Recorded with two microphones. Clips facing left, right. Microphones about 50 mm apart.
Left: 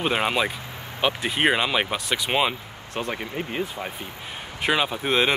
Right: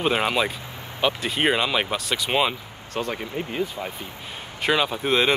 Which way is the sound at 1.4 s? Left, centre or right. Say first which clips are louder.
Even; centre.